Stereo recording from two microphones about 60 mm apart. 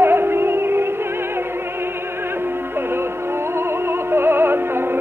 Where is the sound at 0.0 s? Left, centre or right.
Right.